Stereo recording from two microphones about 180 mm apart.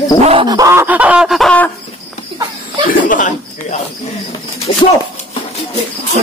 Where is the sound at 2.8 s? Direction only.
45° left (ahead or behind).